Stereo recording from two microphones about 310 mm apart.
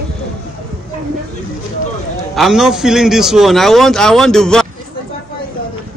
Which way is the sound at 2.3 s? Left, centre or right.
Centre.